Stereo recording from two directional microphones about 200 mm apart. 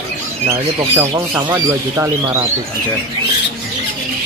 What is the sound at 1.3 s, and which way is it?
Speech, 10° right (ahead or behind).